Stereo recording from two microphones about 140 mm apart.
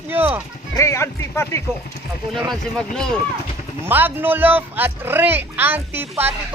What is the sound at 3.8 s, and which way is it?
Speech, 15° right (ahead or behind).